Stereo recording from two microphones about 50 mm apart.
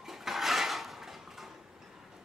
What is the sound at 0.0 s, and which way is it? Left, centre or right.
Dishes, centre.